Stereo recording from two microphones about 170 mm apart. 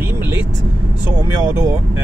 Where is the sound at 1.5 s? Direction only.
15° right (ahead or behind).